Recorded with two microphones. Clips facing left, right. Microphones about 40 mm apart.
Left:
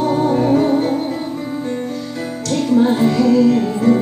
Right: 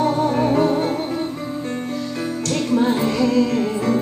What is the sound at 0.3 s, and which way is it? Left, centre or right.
Music, right.